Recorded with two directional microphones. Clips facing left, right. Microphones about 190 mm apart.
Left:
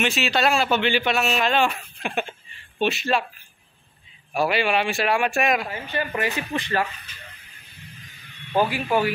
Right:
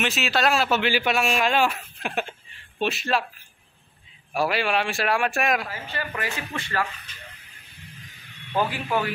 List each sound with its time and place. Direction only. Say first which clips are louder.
0.0 s a man's voice: left 2 dB; centre (ahead or behind)
4.3 s a man's voice: left 2 dB; centre (ahead or behind)
5.7 s speech: left 5 dB; 20° left (ahead or behind)
8.5 s speech: left 4 dB; 10° left (ahead or behind)